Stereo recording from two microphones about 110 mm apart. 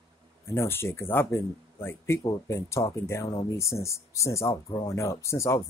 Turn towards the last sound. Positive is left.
turn(degrees=25)  # may be behind; listen again after turning